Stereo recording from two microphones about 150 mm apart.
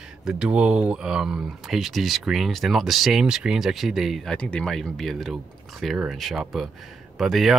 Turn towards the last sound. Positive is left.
turn(degrees=0)  # may be behind; listen again after turning